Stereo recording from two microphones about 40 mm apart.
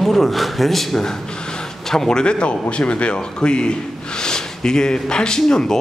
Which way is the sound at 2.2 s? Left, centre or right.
Left.